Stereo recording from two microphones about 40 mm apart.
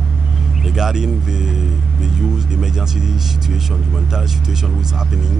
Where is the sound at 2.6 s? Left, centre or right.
Centre.